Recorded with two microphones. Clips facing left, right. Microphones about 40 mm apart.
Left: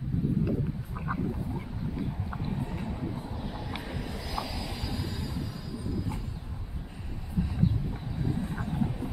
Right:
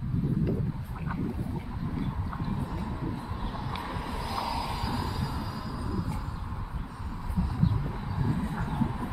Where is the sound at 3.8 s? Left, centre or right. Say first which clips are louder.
Right 3 dB; centre.